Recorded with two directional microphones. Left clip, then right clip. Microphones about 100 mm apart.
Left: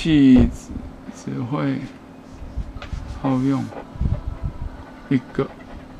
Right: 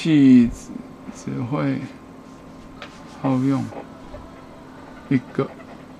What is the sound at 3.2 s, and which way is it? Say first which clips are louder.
Speech: even; 10° right (ahead or behind).